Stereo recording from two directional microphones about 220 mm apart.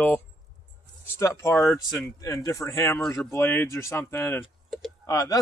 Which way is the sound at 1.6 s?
Centre (ahead or behind).